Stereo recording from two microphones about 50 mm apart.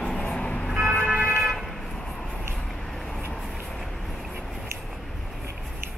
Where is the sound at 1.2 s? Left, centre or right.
Right.